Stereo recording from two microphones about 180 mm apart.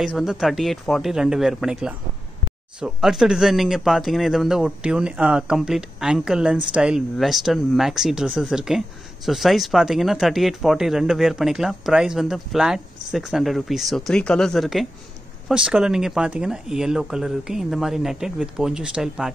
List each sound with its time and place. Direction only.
0.0 s speech: 5° right (ahead or behind)